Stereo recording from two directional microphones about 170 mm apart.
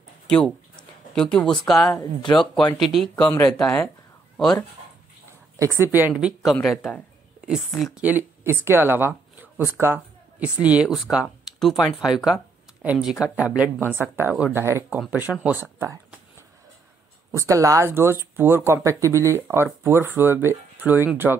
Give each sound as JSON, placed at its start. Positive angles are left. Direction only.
{"t": 0.3, "sound": "speech", "side_deg": 5}
{"t": 2.0, "sound": "speech", "side_deg": 25}
{"t": 2.5, "sound": "speech", "side_deg": 0}
{"t": 5.6, "sound": "speech", "side_deg": -15}
{"t": 17.3, "sound": "speech", "side_deg": -20}